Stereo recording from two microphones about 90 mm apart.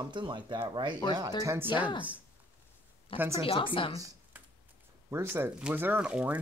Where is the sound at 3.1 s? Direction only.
20° right (ahead or behind).